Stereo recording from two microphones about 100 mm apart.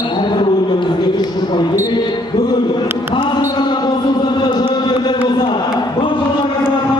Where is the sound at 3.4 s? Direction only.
45° left (ahead or behind).